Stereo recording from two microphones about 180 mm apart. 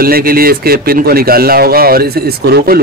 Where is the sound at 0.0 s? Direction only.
55° right (ahead or behind).